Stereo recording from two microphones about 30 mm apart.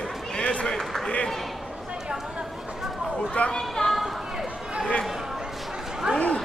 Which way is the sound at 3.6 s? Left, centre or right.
Centre.